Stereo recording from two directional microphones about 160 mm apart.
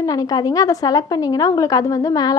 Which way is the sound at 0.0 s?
25° left (ahead or behind).